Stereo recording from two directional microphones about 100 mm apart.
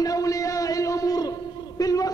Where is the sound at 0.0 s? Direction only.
35° left (ahead or behind).